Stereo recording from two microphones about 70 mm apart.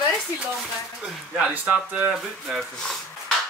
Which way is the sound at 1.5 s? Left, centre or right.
Centre.